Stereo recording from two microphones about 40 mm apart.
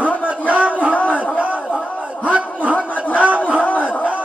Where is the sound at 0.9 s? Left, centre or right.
Left.